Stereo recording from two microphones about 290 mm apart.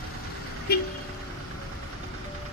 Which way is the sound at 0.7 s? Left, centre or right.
Left.